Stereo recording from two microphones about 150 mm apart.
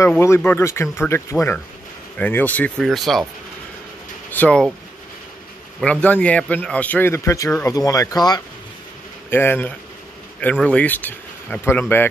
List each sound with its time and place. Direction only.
0.4 s a man's voice: 15° left (ahead or behind)
4.3 s speech: 10° left (ahead or behind)
5.8 s a man's voice: 10° left (ahead or behind); by 8.4 s 25° left (ahead or behind)
9.3 s a man's voice: 15° left (ahead or behind)